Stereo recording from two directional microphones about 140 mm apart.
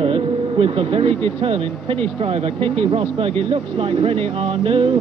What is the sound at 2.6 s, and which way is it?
Speech, 45° right (ahead or behind).